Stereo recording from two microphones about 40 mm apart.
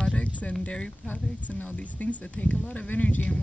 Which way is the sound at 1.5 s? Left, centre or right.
Left.